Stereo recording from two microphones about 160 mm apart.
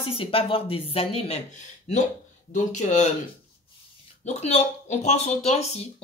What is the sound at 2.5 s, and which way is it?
Speech, 50° left (ahead or behind).